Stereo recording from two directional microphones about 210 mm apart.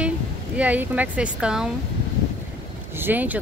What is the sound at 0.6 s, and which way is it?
Speech, 5° right (ahead or behind).